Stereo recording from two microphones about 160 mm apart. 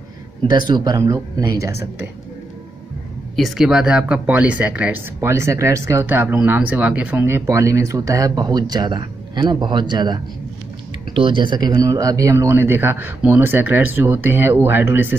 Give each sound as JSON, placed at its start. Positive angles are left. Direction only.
{"t": 0.5, "sound": "speech", "side_deg": -25}
{"t": 3.3, "sound": "speech", "side_deg": 0}